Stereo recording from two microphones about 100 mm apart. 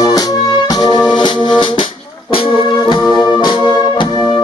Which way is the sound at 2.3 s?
65° left (ahead or behind).